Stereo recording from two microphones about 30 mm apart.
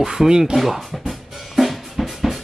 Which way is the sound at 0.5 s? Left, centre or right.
Centre.